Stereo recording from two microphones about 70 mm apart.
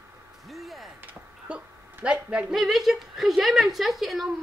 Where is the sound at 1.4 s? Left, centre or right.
Centre.